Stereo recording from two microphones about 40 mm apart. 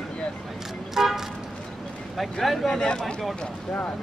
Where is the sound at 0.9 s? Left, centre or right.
Centre.